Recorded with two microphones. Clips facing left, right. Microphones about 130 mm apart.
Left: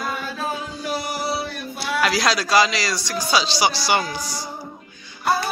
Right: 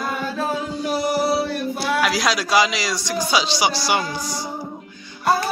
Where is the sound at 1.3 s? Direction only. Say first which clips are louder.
Right 6 dB; 45° right (ahead or behind).